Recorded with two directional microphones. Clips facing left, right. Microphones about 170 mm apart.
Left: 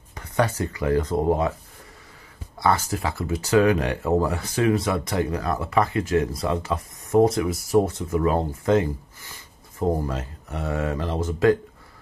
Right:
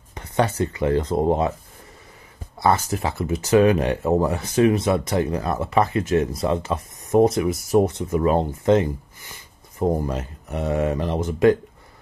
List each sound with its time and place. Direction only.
0.1 s speech: 25° right (ahead or behind)
2.6 s speech: 20° right (ahead or behind)